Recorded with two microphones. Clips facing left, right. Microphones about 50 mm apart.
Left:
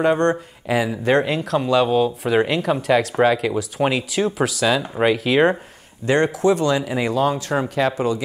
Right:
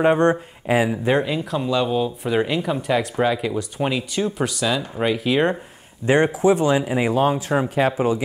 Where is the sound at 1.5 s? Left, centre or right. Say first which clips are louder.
Left 5 dB; centre.